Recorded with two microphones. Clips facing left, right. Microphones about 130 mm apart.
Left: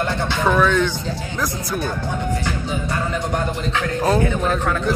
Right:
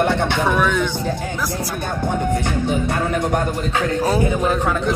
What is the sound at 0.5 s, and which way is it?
Speech, 10° right (ahead or behind).